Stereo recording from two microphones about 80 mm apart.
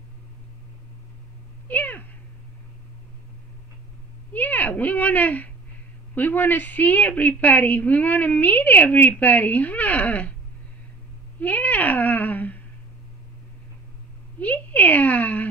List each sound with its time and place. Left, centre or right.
1.7 s speech: left
4.3 s a woman's voice: left
11.3 s speech: centre
14.4 s speech: centre